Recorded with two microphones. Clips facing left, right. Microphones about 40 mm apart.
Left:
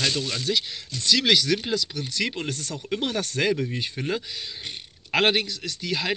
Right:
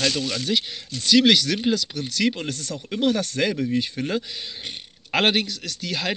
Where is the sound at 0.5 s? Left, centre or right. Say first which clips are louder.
Right 1 dB; centre.